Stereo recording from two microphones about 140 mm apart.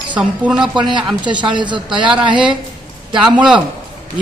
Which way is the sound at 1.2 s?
35° right (ahead or behind).